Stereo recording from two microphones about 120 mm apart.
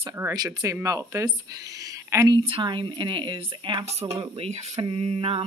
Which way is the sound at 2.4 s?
45° right (ahead or behind).